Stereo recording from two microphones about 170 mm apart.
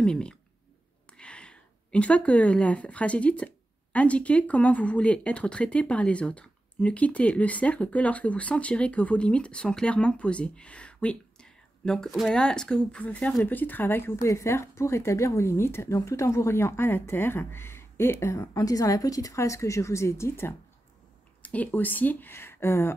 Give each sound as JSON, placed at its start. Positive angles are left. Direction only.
{"t": 0.0, "sound": "speech", "side_deg": 5}